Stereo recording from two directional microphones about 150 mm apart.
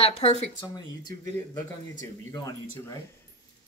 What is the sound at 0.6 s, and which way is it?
Speech, 25° left (ahead or behind).